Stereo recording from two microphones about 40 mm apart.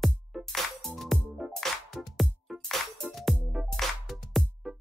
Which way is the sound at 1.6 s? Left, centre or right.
Centre.